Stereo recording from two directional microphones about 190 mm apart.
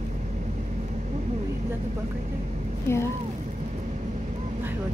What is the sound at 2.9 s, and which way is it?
Speech, 15° left (ahead or behind).